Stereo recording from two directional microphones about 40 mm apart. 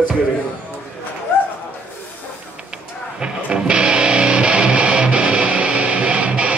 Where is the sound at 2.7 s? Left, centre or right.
Right.